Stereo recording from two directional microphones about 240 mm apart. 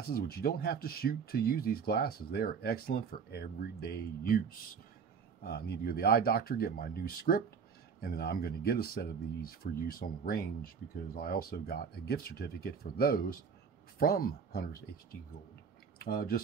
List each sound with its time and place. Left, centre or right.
0.1 s speech: left